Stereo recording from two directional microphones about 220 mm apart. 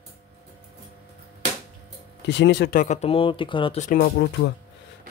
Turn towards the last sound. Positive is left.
turn(degrees=45)  # may be behind; listen again after turning